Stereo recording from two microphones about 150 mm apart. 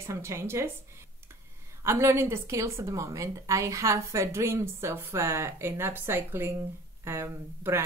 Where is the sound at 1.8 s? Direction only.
20° right (ahead or behind).